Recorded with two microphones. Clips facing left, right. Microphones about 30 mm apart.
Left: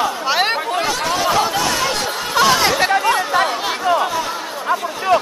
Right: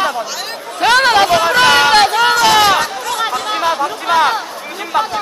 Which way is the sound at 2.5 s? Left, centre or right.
Right.